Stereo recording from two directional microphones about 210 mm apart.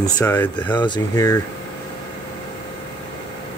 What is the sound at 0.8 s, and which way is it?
Speech, 20° left (ahead or behind).